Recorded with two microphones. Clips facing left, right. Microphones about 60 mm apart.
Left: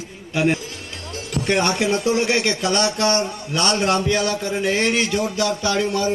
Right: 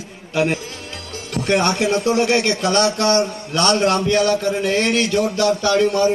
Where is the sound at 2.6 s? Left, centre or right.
Right.